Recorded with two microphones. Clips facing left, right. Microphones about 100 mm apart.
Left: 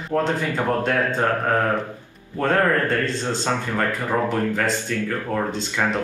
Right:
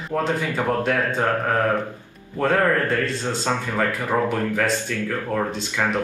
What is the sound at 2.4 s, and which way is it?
Speech, 5° right (ahead or behind).